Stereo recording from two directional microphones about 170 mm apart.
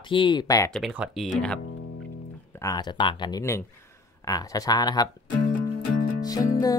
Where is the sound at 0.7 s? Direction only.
5° right (ahead or behind).